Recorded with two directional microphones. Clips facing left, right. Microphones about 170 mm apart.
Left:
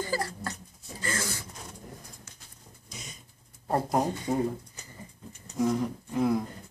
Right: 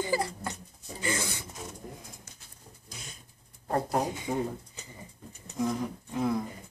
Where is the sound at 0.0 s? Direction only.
20° right (ahead or behind).